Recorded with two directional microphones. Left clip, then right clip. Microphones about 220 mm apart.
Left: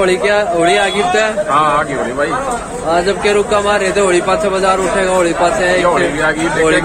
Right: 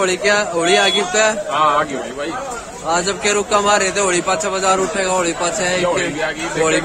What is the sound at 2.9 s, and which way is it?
A man's voice, 20° right (ahead or behind).